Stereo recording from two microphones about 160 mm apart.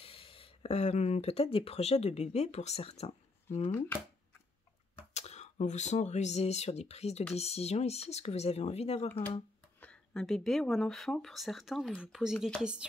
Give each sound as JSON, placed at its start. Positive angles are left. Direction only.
{"t": 0.0, "sound": "speech", "side_deg": 35}
{"t": 5.1, "sound": "speech", "side_deg": 45}
{"t": 9.8, "sound": "speech", "side_deg": 5}